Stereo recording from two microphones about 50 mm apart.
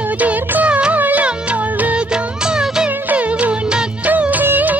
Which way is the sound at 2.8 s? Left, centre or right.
Right.